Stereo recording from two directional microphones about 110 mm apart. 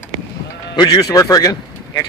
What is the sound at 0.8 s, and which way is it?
Speech, 40° left (ahead or behind).